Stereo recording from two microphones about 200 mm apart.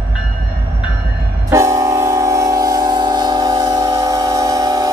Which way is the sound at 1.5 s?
15° right (ahead or behind).